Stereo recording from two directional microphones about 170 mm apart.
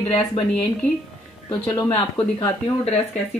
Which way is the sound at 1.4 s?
20° left (ahead or behind).